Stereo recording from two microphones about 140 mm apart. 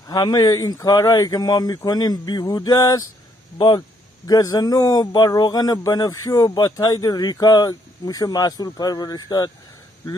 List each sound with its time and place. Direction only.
0.0 s speech: 30° left (ahead or behind)